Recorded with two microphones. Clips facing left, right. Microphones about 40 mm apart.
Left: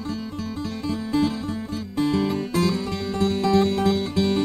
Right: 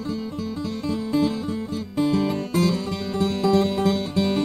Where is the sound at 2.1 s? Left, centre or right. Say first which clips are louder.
Left 1 dB; centre.